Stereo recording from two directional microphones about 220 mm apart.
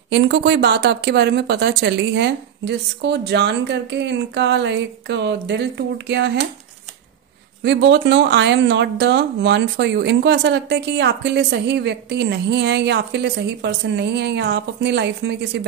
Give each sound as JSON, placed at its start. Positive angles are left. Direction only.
{"t": 0.1, "sound": "speech", "side_deg": -50}
{"t": 7.6, "sound": "speech", "side_deg": -55}